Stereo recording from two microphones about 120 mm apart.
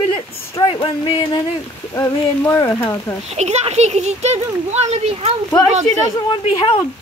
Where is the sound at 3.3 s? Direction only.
70° right (ahead or behind).